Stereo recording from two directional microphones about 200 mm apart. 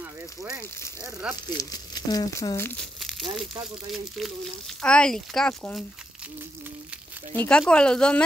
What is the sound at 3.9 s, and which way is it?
Speech, centre (ahead or behind).